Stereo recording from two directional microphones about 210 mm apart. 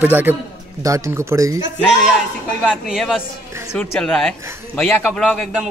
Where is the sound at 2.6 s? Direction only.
Centre (ahead or behind).